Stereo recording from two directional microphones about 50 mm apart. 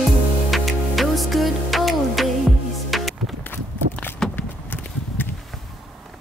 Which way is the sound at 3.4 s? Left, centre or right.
Left.